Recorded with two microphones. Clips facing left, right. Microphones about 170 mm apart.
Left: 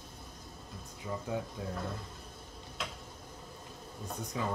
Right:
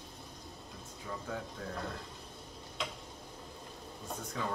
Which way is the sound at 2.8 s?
Centre (ahead or behind).